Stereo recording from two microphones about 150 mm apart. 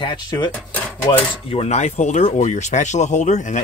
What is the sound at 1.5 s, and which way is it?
Speech, 45° left (ahead or behind).